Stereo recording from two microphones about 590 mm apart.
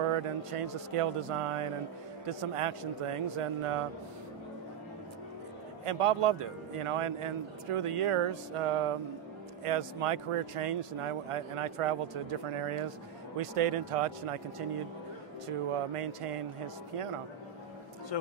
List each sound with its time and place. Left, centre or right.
0.0 s speech: right
5.9 s speech: right
15.4 s speech: right
18.1 s a man's voice: left